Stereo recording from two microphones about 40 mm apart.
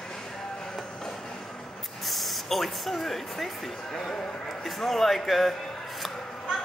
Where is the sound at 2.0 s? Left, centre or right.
Centre.